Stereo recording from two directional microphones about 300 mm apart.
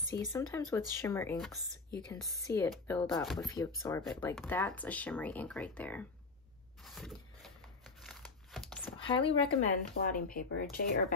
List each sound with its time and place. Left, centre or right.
0.1 s speech: centre
6.8 s a sound: centre
8.9 s speech: centre
10.0 s speech: left